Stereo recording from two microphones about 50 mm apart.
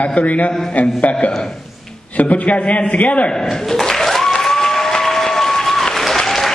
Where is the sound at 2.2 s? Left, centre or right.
Left.